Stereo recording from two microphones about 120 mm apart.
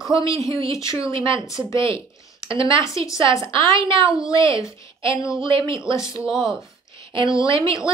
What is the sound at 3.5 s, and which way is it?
Speech, 45° right (ahead or behind).